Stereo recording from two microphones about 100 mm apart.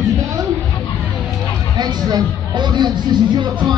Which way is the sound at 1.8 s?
45° right (ahead or behind).